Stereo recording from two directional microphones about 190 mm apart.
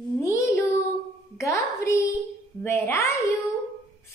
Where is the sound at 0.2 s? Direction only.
15° left (ahead or behind).